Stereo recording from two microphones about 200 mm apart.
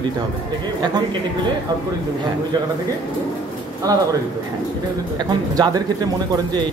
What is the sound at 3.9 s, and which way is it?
Speech, 20° right (ahead or behind).